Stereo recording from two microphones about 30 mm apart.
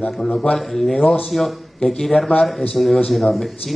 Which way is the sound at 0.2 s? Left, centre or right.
Centre.